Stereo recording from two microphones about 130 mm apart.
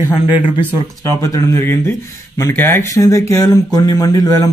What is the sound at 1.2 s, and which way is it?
Speech, 20° left (ahead or behind).